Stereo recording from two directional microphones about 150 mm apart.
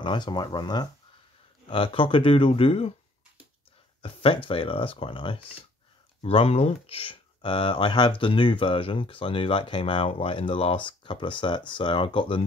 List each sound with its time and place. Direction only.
0.0 s speech: 30° left (ahead or behind)
4.0 s speech: 35° left (ahead or behind)